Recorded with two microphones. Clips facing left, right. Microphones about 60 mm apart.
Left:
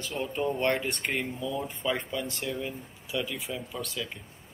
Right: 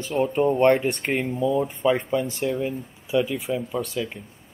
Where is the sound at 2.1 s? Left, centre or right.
Right.